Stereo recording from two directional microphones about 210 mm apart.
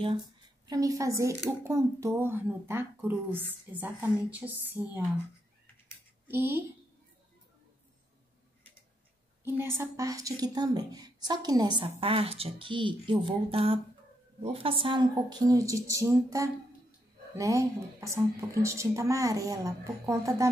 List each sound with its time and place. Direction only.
0.7 s speech: 15° right (ahead or behind)
6.2 s speech: 10° right (ahead or behind)
9.8 s a woman's voice: 15° right (ahead or behind)